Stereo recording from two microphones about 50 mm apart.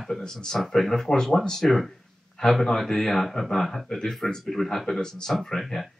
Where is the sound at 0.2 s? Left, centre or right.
Centre.